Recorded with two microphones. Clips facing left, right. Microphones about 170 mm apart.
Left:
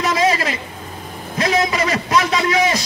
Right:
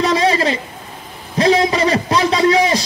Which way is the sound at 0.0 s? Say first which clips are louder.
Right 3 dB; 30° right (ahead or behind).